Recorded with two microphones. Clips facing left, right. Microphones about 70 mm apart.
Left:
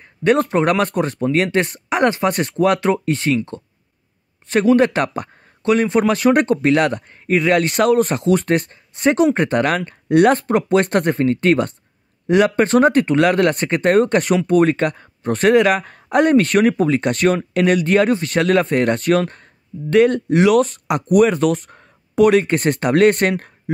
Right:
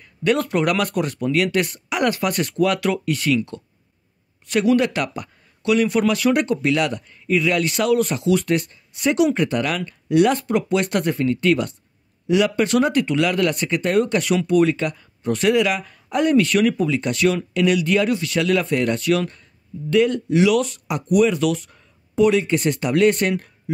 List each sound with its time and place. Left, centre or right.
0.0 s speech: left
20.8 s speech: left